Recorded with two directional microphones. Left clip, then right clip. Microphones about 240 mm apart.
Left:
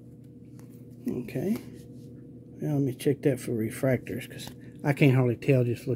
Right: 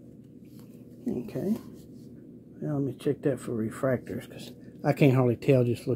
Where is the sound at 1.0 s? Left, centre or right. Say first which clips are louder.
Even; centre.